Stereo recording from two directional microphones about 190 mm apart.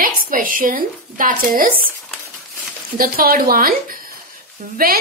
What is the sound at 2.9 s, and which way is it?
A woman's voice, 50° right (ahead or behind).